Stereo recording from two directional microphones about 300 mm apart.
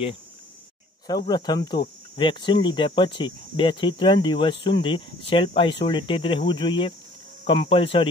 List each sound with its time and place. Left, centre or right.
1.0 s speech: centre